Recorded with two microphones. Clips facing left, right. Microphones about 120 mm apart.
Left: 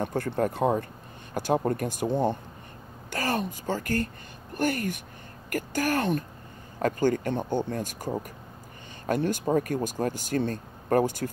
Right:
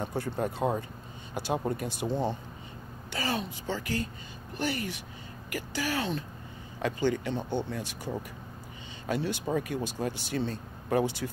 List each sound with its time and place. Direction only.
0.0 s speech: 55° left (ahead or behind)
1.3 s speech: 45° left (ahead or behind)
3.1 s speech: 50° left (ahead or behind)